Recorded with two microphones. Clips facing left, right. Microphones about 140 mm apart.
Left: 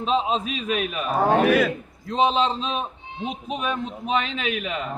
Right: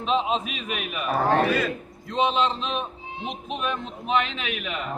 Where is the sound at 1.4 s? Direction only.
80° left.